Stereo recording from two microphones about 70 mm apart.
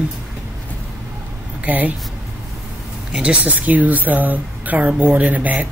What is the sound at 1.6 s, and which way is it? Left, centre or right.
Speech, right.